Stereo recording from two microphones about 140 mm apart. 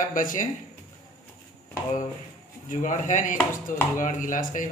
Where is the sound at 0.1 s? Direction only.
75° left (ahead or behind).